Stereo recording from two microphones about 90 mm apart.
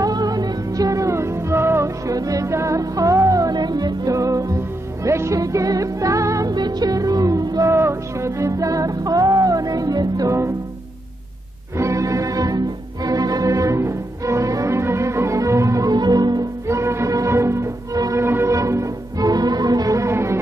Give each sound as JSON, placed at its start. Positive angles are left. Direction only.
{"t": 0.0, "sound": "music", "side_deg": -45}
{"t": 6.5, "sound": "music", "side_deg": -50}
{"t": 11.7, "sound": "music", "side_deg": -35}
{"t": 16.6, "sound": "music", "side_deg": -30}